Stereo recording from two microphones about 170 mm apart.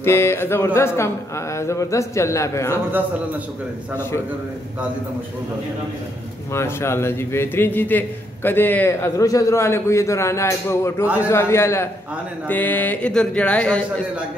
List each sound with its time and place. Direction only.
0.0 s a man's voice: 15° left (ahead or behind)
6.5 s a man's voice: 15° left (ahead or behind)